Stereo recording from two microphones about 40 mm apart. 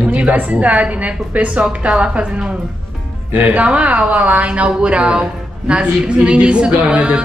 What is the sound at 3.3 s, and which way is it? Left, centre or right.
Speech, right.